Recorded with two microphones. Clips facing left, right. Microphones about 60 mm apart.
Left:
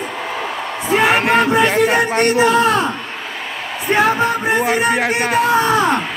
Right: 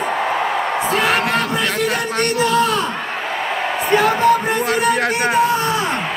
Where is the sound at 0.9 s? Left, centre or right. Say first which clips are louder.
Left 5 dB; left.